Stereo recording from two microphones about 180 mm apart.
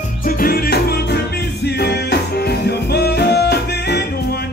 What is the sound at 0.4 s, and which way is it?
Music, 60° left (ahead or behind).